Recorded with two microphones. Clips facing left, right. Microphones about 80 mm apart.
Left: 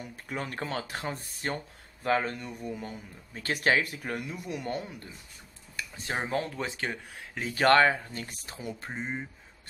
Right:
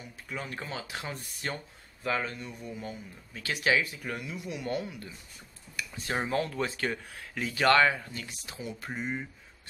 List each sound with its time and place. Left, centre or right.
0.0 s speech: left
0.9 s speech: left
4.6 s speech: left
7.5 s speech: left
8.8 s speech: left